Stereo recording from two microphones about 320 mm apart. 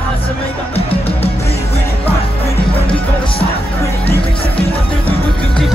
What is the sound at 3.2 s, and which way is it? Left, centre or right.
Music, centre.